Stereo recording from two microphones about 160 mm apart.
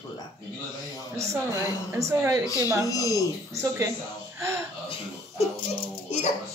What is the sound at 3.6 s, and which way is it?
Speech, 15° right (ahead or behind).